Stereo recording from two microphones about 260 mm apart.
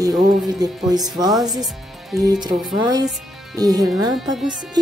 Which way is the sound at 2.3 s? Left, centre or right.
Centre.